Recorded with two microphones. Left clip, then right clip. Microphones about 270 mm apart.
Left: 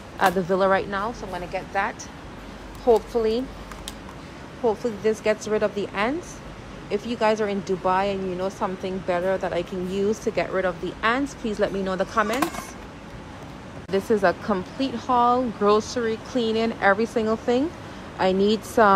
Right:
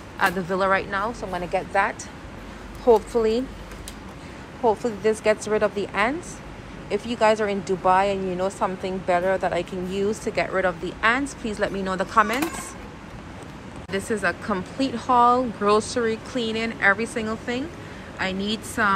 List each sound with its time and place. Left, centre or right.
0.2 s speech: centre
4.6 s speech: centre
13.8 s speech: centre